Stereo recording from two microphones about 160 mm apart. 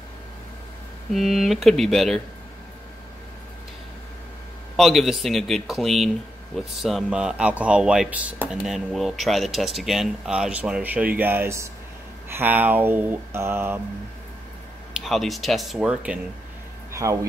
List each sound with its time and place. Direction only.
1.1 s speech: centre (ahead or behind)
4.7 s speech: centre (ahead or behind)
15.0 s speech: centre (ahead or behind)
16.9 s speech: 20° right (ahead or behind)